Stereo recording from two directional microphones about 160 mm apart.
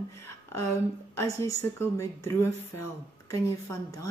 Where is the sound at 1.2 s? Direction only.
15° left (ahead or behind).